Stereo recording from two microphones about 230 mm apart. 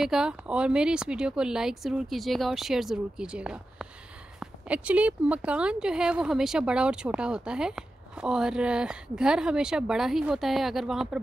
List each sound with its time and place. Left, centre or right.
0.0 s speech: centre